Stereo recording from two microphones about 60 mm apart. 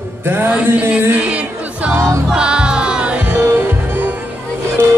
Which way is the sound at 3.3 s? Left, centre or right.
Right.